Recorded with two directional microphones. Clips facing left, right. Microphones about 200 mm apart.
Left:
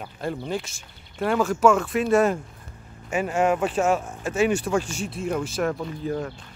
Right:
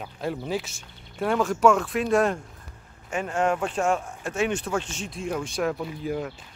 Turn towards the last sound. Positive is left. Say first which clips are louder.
# left 1 dB
turn(degrees=-5)  # may be behind; listen again after turning